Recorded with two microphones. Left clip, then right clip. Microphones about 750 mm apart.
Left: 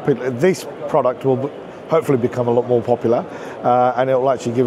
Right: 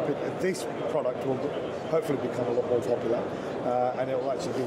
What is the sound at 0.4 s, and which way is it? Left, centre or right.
Speech, left.